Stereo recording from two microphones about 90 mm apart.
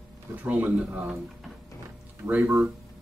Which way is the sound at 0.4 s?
20° right (ahead or behind).